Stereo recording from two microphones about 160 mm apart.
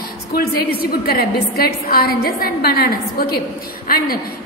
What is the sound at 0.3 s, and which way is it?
A woman's voice, 70° left (ahead or behind).